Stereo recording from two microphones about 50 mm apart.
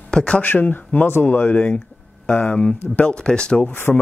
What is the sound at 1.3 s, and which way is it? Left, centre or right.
Speech, left.